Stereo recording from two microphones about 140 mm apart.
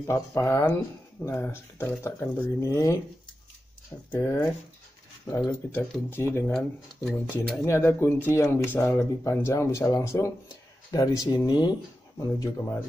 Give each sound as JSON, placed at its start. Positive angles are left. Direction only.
{"t": 0.0, "sound": "speech", "side_deg": 20}
{"t": 4.1, "sound": "speech", "side_deg": 15}
{"t": 5.7, "sound": "speech", "side_deg": 15}
{"t": 7.6, "sound": "speech", "side_deg": 20}